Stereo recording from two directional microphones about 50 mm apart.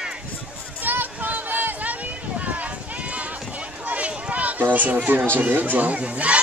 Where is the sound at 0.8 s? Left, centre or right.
Right.